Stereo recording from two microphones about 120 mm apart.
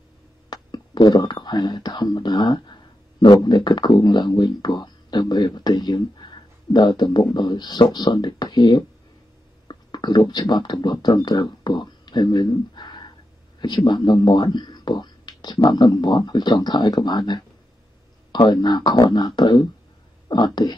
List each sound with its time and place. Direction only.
0.5 s speech: 35° left (ahead or behind)